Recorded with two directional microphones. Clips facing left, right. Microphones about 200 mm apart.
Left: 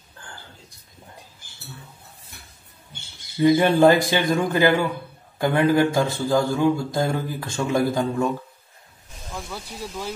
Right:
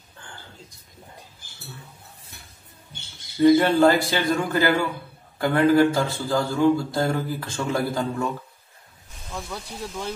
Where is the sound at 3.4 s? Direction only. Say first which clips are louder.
Left 1 dB; 20° left (ahead or behind).